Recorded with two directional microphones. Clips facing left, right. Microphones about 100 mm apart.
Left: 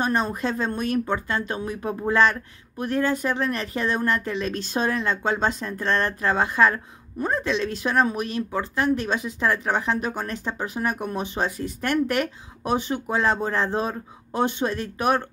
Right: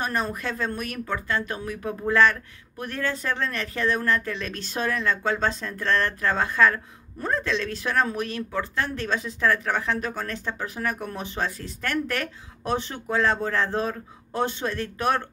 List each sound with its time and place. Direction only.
0.0 s speech: 25° left (ahead or behind)